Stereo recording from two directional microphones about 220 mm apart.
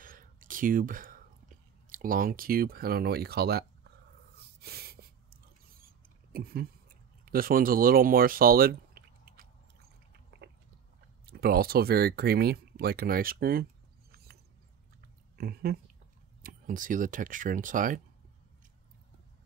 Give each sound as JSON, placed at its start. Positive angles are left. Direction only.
{"t": 0.0, "sound": "whispering", "side_deg": -40}
{"t": 1.9, "sound": "speech", "side_deg": -40}
{"t": 4.4, "sound": "a sound", "side_deg": -45}
{"t": 11.2, "sound": "speech", "side_deg": -45}
{"t": 14.1, "sound": "a sound", "side_deg": -45}
{"t": 15.3, "sound": "speech", "side_deg": -45}